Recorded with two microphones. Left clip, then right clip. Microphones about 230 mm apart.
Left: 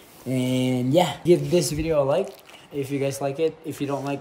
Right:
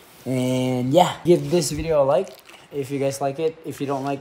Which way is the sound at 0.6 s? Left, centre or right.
Right.